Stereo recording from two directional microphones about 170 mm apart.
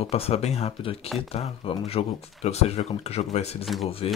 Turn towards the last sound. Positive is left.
turn(degrees=35)  # may be behind; listen again after turning